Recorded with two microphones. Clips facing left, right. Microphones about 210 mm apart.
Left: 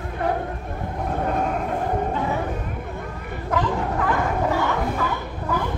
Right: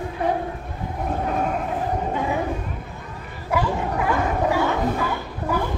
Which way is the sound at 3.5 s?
10° right (ahead or behind).